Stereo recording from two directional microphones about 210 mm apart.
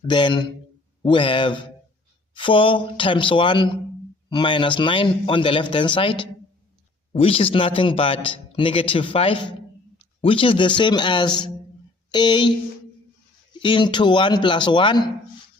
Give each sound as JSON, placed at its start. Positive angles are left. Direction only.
{"t": 0.0, "sound": "a man's voice", "side_deg": 20}